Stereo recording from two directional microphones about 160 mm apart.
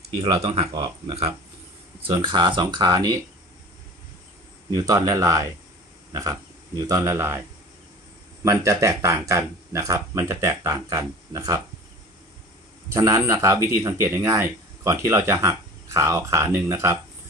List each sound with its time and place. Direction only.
0.2 s speech: 40° right (ahead or behind)
0.7 s speech: 25° right (ahead or behind)
4.6 s speech: 25° right (ahead or behind)
8.5 s speech: 20° right (ahead or behind)
12.9 s speech: 20° right (ahead or behind)